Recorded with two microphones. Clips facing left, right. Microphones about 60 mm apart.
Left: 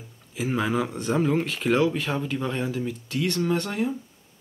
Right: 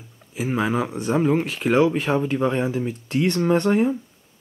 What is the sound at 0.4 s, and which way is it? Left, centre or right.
Speech, centre.